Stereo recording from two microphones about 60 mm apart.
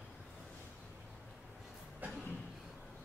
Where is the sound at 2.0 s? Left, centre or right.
Right.